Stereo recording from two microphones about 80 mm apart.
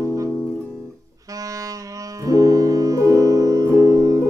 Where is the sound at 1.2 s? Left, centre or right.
Right.